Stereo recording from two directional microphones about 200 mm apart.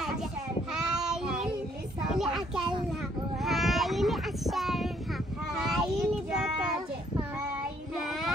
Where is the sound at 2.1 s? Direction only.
Centre (ahead or behind).